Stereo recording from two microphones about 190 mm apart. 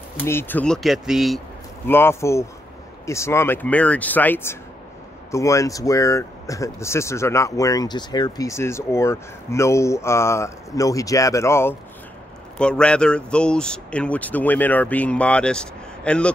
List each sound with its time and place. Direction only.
0.2 s speech: 10° left (ahead or behind)
1.9 s speech: 10° left (ahead or behind)